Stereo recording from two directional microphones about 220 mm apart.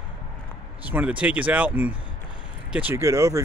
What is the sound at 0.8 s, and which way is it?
Speech, 5° right (ahead or behind).